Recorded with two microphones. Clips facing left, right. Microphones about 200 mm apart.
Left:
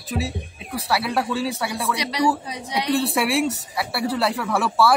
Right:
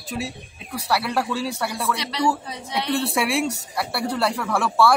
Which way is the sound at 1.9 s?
15° left (ahead or behind).